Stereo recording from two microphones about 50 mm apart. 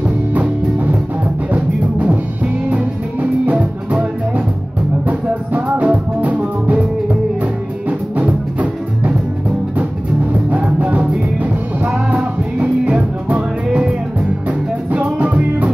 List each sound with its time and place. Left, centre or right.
0.3 s music: right
8.2 s music: right
10.5 s music: right
15.1 s music: right